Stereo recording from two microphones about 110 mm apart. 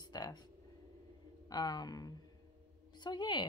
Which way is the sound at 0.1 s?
40° left (ahead or behind).